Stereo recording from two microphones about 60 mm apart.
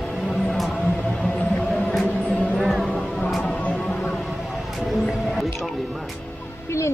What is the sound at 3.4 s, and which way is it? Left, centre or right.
Music, left.